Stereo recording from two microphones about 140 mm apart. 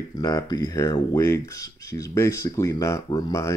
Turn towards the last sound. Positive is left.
turn(degrees=25)  # may be behind; listen again after turning